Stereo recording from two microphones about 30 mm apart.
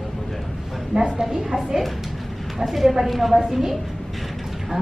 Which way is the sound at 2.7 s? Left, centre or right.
Centre.